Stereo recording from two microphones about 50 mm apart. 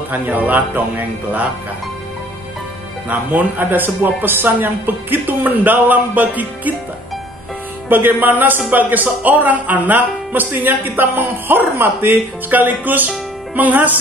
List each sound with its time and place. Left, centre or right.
0.1 s a man's voice: right
3.1 s a man's voice: right
7.9 s a man's voice: right